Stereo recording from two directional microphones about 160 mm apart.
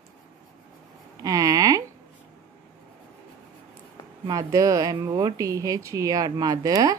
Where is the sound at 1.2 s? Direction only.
20° right (ahead or behind).